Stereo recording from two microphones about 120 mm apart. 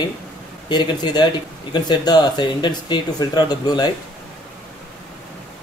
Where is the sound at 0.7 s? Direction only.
35° left (ahead or behind).